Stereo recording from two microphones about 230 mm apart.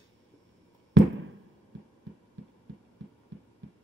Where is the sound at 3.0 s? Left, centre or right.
Right.